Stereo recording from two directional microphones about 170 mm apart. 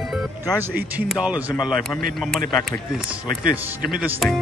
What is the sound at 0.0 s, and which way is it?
Music, centre (ahead or behind).